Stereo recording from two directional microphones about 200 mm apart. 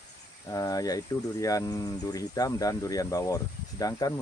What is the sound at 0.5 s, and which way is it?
Speech, 15° left (ahead or behind).